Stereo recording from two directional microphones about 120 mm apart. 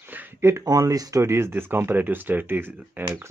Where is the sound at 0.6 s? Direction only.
30° right (ahead or behind).